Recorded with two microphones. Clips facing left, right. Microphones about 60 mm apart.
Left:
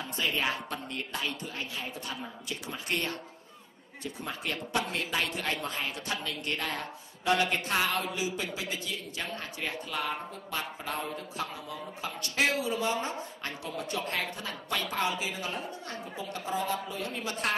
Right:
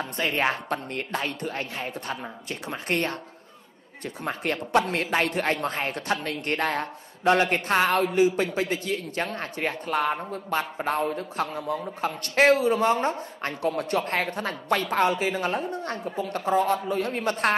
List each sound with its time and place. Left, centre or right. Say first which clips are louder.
0.0 s speech: right 6 dB; right